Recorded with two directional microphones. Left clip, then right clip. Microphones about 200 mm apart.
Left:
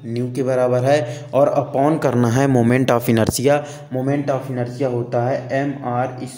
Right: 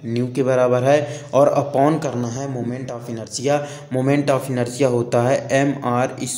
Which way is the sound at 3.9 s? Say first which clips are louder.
Right 2 dB; 10° right (ahead or behind).